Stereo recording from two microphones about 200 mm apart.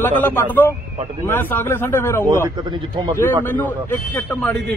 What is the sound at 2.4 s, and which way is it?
Speech, 25° right (ahead or behind).